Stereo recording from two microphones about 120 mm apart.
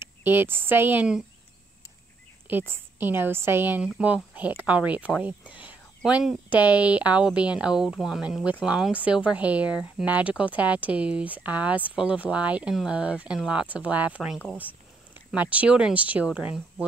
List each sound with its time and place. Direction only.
0.0 s speech: 15° right (ahead or behind)
2.4 s speech: 15° right (ahead or behind)